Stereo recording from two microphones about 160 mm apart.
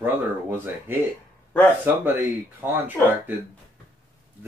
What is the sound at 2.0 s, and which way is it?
Speech, 10° right (ahead or behind).